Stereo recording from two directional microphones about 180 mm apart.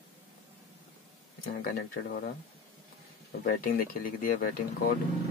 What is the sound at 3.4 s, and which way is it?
Speech, 50° left (ahead or behind).